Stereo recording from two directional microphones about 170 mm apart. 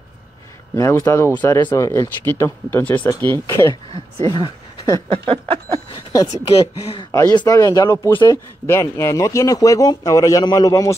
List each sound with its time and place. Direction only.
0.7 s speech: 15° left (ahead or behind)
1.6 s a man's voice: 25° left (ahead or behind)
1.9 s speech: 15° left (ahead or behind)
5.1 s a sound: 35° right (ahead or behind)
5.9 s a sound: 20° left (ahead or behind)
7.1 s a man's voice: 20° left (ahead or behind)